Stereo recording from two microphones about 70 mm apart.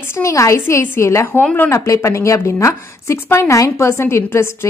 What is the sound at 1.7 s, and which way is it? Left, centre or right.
A woman's voice, left.